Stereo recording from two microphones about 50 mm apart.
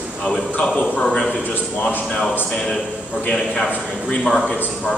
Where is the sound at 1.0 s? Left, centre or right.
Centre.